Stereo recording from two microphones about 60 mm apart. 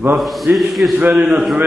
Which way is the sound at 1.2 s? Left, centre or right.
Centre.